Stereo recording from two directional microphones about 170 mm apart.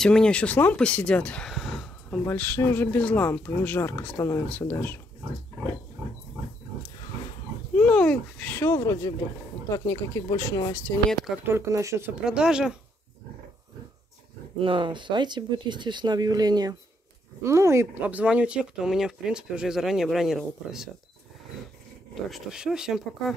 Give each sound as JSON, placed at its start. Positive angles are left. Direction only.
{"t": 0.0, "sound": "speech", "side_deg": 5}
{"t": 2.2, "sound": "speech", "side_deg": 10}
{"t": 7.7, "sound": "speech", "side_deg": 5}
{"t": 11.4, "sound": "speech", "side_deg": -15}
{"t": 12.2, "sound": "speech", "side_deg": -5}
{"t": 14.6, "sound": "speech", "side_deg": -30}
{"t": 22.1, "sound": "speech", "side_deg": 0}